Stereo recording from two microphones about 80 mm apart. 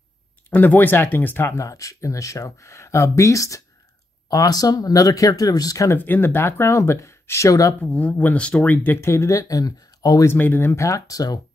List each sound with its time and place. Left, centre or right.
0.5 s speech: left
1.6 s speech: left
5.9 s speech: left
7.8 s speech: centre; by 10.2 s left
10.3 s speech: left
10.9 s speech: left